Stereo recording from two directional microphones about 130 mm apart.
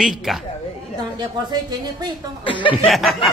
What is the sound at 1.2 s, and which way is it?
Speech, 30° right (ahead or behind).